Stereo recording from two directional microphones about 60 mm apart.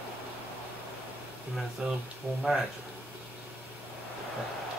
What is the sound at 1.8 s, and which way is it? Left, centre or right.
Speech, centre.